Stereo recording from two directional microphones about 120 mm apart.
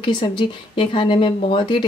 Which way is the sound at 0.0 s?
40° left (ahead or behind).